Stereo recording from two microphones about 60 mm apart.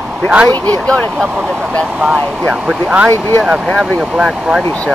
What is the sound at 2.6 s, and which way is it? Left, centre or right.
Speech, centre.